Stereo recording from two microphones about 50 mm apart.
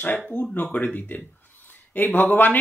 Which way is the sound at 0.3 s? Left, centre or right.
Left.